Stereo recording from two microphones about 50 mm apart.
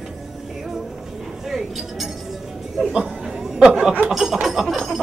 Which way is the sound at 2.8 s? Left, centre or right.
Centre.